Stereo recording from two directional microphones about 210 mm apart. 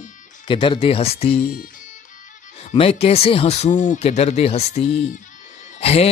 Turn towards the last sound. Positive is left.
turn(degrees=30)  # may be behind; listen again after turning